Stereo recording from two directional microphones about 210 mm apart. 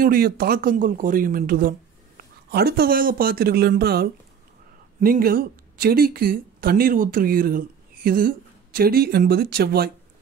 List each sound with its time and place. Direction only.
0.0 s speech: 45° right (ahead or behind)